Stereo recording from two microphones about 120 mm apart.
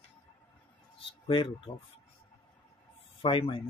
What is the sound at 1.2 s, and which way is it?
Speech, 45° left (ahead or behind).